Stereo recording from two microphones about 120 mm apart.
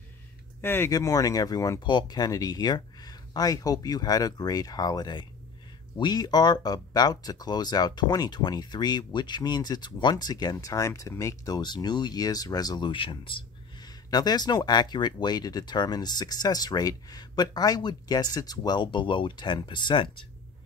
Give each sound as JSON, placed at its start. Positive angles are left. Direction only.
{"t": 0.6, "sound": "speech", "side_deg": 20}
{"t": 0.9, "sound": "speech", "side_deg": 30}